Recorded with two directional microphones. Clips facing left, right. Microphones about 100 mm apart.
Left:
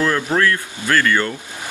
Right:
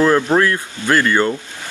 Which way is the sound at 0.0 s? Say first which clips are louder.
Right 4 dB; 25° right (ahead or behind).